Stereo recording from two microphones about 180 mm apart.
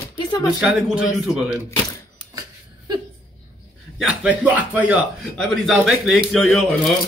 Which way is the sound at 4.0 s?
5° right (ahead or behind).